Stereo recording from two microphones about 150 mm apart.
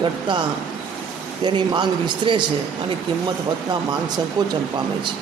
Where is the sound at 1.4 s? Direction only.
30° right (ahead or behind).